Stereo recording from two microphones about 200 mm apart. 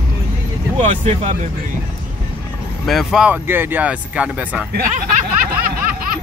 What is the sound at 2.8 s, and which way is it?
Speech, centre (ahead or behind).